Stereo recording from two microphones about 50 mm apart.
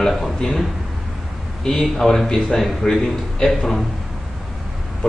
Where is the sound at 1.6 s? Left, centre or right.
Centre.